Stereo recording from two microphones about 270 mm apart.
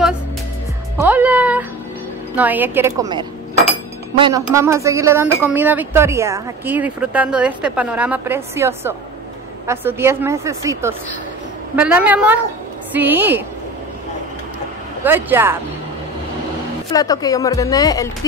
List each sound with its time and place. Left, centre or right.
0.9 s music: centre
2.3 s a woman's voice: centre
15.0 s speech: centre
16.9 s speech: centre